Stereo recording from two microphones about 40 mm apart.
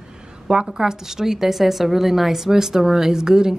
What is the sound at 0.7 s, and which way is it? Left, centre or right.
A woman's voice, centre.